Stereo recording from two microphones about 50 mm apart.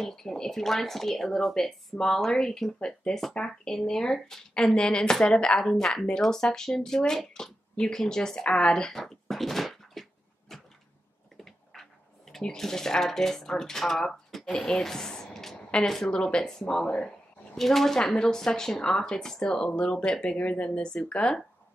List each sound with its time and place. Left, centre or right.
0.0 s speech: centre
10.5 s a sound: centre
11.3 s speech: centre
16.1 s speech: centre
17.6 s speech: centre